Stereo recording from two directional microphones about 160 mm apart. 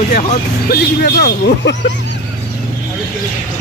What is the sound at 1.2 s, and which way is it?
Speech, 70° left (ahead or behind).